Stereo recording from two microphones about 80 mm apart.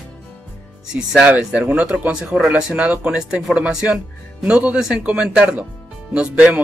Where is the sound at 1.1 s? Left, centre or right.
Centre.